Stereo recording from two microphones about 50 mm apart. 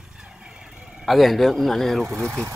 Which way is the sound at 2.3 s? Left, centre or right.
Right.